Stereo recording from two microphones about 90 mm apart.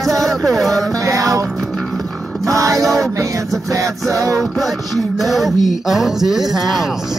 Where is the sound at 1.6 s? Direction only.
5° left (ahead or behind).